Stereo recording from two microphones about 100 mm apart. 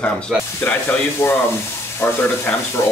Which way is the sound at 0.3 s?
15° right (ahead or behind).